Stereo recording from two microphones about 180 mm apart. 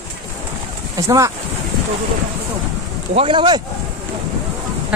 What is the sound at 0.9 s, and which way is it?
Speech, 15° right (ahead or behind).